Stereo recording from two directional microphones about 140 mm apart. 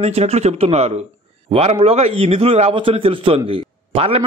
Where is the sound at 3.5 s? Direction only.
45° right (ahead or behind).